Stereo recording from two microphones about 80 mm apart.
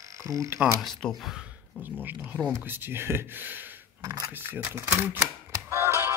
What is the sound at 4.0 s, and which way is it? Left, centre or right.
Speech, right.